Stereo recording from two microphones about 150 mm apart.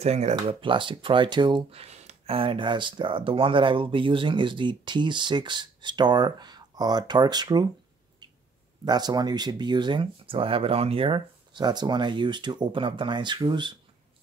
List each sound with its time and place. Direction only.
0.0 s speech: 45° right (ahead or behind); by 7.6 s 30° right (ahead or behind)
8.8 s speech: 25° right (ahead or behind)